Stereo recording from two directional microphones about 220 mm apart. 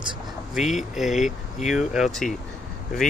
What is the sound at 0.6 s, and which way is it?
Speech, centre (ahead or behind).